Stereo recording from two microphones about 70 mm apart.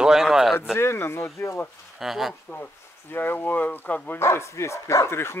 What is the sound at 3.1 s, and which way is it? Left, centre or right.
Speech, left.